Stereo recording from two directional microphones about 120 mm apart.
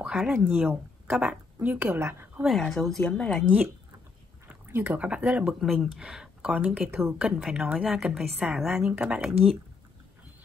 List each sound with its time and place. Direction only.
0.0 s a sound: 5° right (ahead or behind)
0.3 s speech: 20° right (ahead or behind)
2.4 s a woman's voice: centre (ahead or behind)
3.4 s speech: 10° right (ahead or behind)
7.2 s a woman's voice: 5° right (ahead or behind)